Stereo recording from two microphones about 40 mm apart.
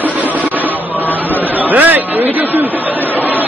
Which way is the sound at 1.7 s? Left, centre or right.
Right.